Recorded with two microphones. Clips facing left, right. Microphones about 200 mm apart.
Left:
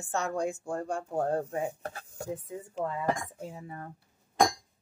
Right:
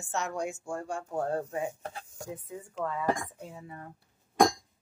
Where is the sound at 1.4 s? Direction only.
60° left (ahead or behind).